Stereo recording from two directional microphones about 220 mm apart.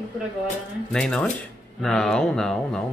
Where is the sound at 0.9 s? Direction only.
Centre (ahead or behind).